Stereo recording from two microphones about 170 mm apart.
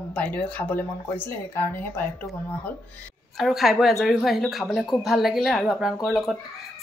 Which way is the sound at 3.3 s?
Centre (ahead or behind).